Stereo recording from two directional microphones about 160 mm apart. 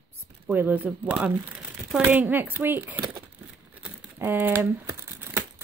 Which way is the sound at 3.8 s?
10° right (ahead or behind).